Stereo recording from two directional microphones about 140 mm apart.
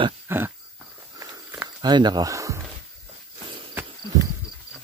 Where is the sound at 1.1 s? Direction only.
20° right (ahead or behind).